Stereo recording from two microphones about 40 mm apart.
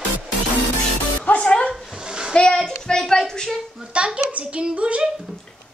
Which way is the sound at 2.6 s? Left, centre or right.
Centre.